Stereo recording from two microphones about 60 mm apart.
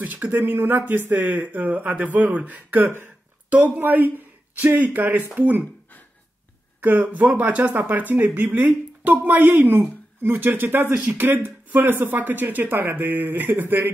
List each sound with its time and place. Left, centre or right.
0.0 s speech: right
6.8 s speech: right